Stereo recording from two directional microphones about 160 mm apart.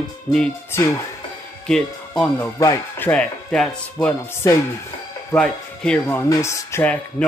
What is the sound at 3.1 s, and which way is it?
Speech, 5° left (ahead or behind).